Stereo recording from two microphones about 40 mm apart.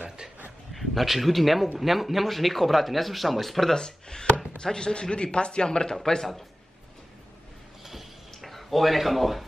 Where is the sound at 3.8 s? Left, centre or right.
Centre.